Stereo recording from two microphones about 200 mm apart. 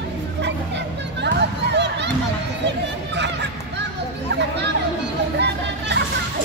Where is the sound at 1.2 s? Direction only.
60° right (ahead or behind).